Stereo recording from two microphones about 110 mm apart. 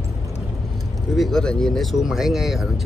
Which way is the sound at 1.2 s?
5° left (ahead or behind).